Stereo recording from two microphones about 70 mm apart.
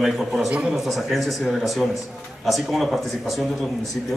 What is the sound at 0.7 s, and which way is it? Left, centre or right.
A man's voice, centre.